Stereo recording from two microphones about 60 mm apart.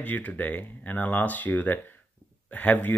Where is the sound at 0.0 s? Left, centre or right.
Left.